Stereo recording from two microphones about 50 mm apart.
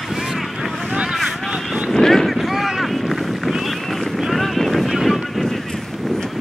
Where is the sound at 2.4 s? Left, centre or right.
Centre.